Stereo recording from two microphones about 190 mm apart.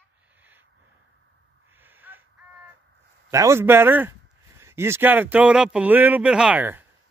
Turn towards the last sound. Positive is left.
turn(degrees=-10)  # may be behind; listen again after turning